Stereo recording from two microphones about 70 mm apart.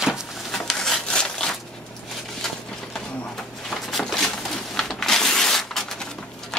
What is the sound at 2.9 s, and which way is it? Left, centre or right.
Pigeon, centre.